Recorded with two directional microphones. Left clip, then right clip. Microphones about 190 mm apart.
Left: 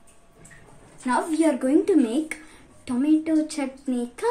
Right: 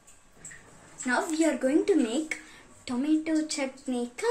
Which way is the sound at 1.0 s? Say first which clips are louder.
Left 4 dB; 30° left (ahead or behind).